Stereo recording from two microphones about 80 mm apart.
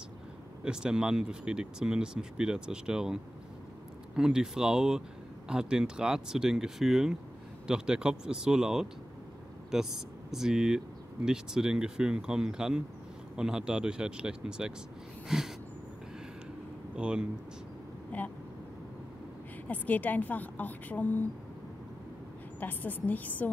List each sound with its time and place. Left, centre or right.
0.7 s speech: centre
4.2 s speech: centre
15.2 s a sound: centre
16.9 s speech: centre
18.1 s speech: left
19.7 s a woman's voice: left
22.6 s a woman's voice: left